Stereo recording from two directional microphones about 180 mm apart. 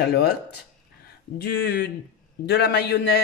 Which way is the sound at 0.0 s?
60° left (ahead or behind).